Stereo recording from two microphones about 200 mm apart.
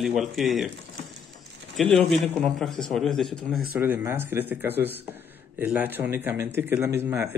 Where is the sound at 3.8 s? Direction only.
10° right (ahead or behind).